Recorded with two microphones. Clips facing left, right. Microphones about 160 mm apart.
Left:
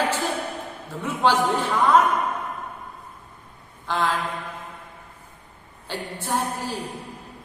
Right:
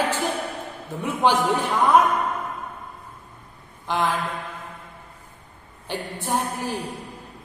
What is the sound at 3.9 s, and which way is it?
Speech, 15° right (ahead or behind).